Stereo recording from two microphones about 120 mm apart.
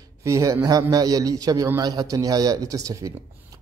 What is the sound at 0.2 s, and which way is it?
A man's voice, 25° right (ahead or behind).